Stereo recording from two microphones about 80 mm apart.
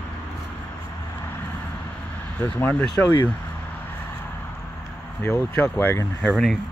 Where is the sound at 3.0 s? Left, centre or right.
Left.